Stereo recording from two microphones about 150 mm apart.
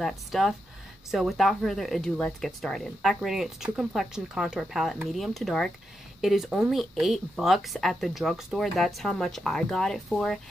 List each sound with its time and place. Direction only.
0.0 s speech: centre (ahead or behind)